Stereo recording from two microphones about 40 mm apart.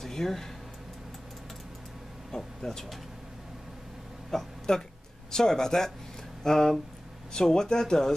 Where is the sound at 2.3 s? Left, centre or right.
Centre.